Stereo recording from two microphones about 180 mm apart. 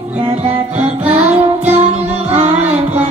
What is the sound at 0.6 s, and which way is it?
Music, 35° right (ahead or behind).